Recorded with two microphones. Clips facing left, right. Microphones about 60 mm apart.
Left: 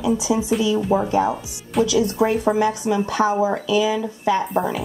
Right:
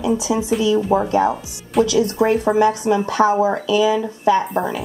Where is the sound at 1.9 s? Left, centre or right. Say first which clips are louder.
Right 2 dB; right.